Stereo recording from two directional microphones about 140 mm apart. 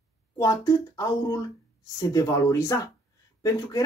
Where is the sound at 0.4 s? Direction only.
25° left (ahead or behind).